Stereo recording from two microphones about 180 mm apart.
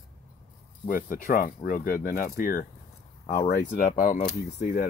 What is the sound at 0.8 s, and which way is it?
Speech, 50° left (ahead or behind).